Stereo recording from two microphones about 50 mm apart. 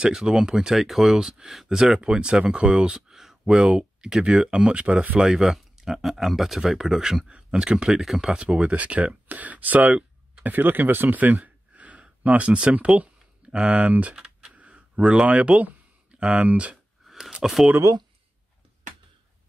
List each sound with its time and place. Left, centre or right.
0.0 s speech: centre
5.1 s speech: centre
7.2 s speech: centre
10.4 s speech: right
14.1 s a sound: right
15.2 s speech: right
17.1 s a sound: centre